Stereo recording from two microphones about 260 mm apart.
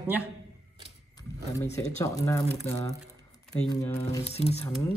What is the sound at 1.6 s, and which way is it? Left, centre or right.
Speech, left.